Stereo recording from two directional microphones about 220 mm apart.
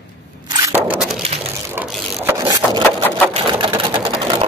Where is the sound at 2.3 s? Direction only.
15° right (ahead or behind).